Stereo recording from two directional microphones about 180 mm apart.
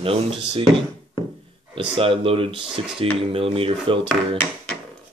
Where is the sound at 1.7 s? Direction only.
30° right (ahead or behind).